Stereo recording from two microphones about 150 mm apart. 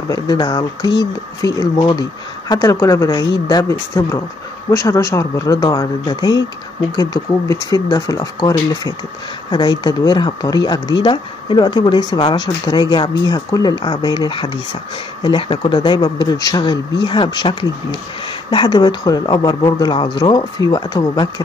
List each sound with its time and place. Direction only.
0.1 s speech: 30° left (ahead or behind)
7.7 s speech: 25° left (ahead or behind)